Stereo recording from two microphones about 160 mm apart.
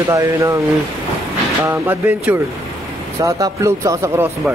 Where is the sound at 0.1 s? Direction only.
20° right (ahead or behind).